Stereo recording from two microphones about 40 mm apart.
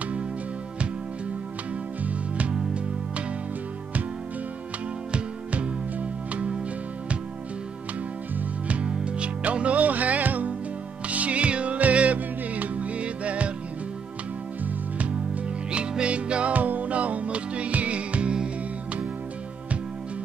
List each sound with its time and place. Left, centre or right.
2.0 s music: right
5.1 s music: right
8.6 s music: right
14.6 s music: right
15.7 s music: right
16.5 s music: right